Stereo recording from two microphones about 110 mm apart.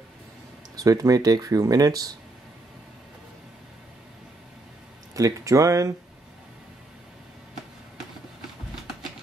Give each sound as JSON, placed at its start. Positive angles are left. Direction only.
{"t": 0.7, "sound": "speech", "side_deg": -35}
{"t": 5.1, "sound": "speech", "side_deg": -30}